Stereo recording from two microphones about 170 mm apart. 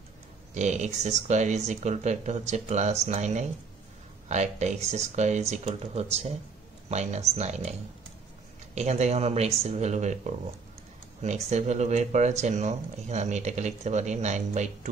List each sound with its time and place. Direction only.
0.6 s speech: 45° right (ahead or behind)
8.7 s speech: 40° right (ahead or behind)